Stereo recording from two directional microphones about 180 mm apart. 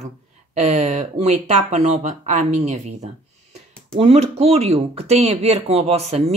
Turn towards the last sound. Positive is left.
turn(degrees=-35)  # may be behind; listen again after turning